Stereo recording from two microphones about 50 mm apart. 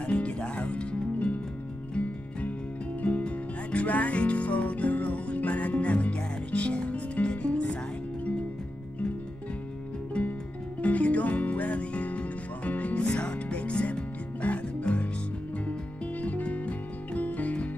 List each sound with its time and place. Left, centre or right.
0.0 s music: left
3.0 s music: left
10.2 s music: centre
16.2 s music: left